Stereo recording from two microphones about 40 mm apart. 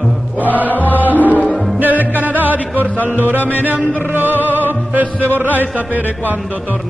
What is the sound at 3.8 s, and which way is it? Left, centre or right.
Music, left.